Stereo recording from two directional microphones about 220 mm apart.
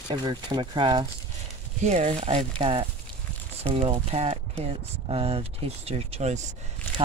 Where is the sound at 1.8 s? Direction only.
30° right (ahead or behind).